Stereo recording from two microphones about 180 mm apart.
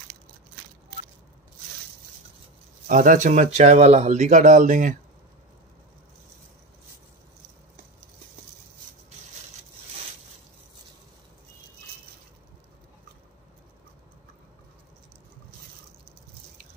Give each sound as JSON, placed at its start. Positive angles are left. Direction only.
{"t": 2.9, "sound": "speech", "side_deg": -45}